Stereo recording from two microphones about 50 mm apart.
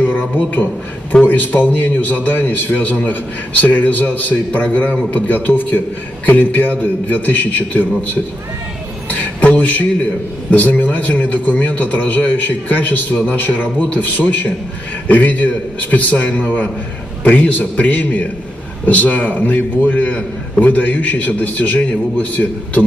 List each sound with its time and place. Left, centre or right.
0.0 s a sound: left
1.2 s a man's voice: left
9.1 s a man's voice: left